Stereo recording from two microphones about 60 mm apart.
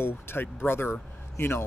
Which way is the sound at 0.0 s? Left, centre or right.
Left.